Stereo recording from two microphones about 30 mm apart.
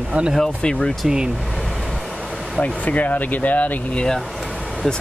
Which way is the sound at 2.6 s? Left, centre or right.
Left.